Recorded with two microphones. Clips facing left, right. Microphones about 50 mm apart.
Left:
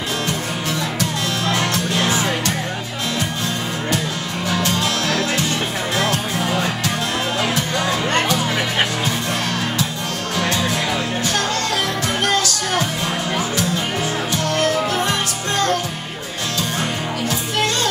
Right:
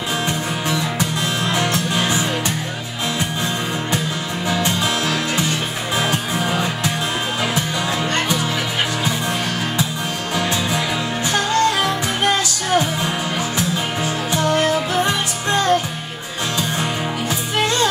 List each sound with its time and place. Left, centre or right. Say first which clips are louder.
0.7 s music: right 1 dB; centre
4.6 s music: even; centre
10.3 s music: even; centre
14.3 s music: right 3 dB; centre